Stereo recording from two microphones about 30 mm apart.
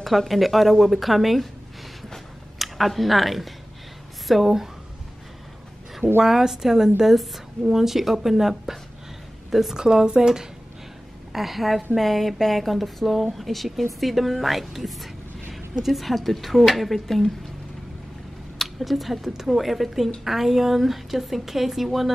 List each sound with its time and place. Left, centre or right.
0.3 s a woman's voice: centre
2.1 s a sound: centre
4.3 s a woman's voice: centre
5.9 s a woman's voice: centre
9.8 s speech: right
11.3 s a woman's voice: centre
18.6 s a woman's voice: centre